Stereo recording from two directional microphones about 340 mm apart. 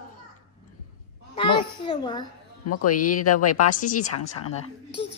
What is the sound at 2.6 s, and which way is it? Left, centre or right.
Speech, left.